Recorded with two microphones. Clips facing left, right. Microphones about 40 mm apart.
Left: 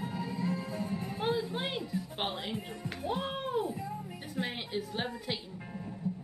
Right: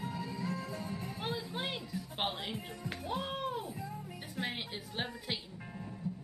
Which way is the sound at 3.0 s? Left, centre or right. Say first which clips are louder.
Left 3 dB; centre.